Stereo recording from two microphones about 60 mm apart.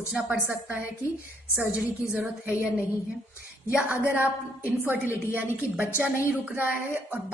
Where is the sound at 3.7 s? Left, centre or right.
Right.